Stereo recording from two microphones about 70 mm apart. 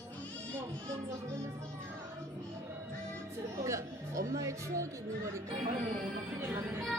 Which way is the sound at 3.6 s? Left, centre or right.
Right.